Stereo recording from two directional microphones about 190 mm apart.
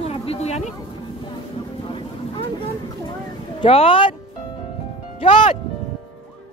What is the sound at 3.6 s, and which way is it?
Speech, 30° left (ahead or behind).